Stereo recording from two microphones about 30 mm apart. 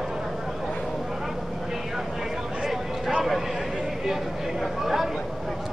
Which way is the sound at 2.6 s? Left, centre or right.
Centre.